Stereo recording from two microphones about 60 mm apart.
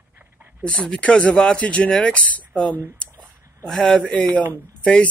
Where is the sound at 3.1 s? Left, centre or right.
Right.